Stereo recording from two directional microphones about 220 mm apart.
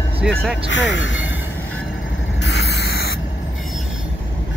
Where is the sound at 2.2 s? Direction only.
55° left (ahead or behind).